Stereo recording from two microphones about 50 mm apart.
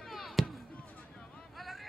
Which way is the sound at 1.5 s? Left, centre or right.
Centre.